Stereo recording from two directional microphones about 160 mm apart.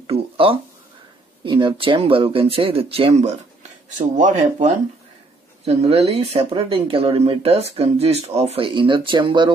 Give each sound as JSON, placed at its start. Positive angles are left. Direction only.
{"t": 0.0, "sound": "a sound", "side_deg": -35}
{"t": 1.4, "sound": "speech", "side_deg": -30}
{"t": 4.2, "sound": "speech", "side_deg": -50}
{"t": 5.7, "sound": "speech", "side_deg": -40}